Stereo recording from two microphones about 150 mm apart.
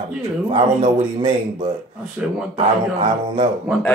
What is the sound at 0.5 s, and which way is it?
Speech, 30° right (ahead or behind).